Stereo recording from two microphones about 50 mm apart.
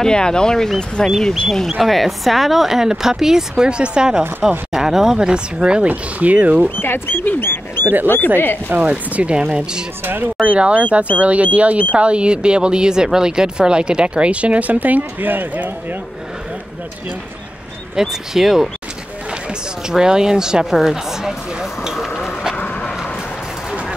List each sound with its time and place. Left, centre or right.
0.0 s speech: centre
1.7 s speech: centre
5.9 s speech: right
6.8 s speech: left
8.6 s speech: right
10.0 s speech: right
10.4 s speech: right
17.9 s speech: centre
19.9 s speech: centre
20.7 s a sound: centre